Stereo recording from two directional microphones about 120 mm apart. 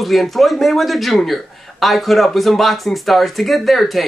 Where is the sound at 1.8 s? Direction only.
Centre (ahead or behind).